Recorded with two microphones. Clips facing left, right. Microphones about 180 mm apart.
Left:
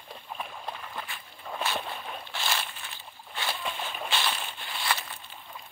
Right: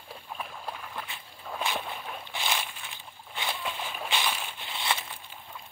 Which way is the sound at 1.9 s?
5° right (ahead or behind).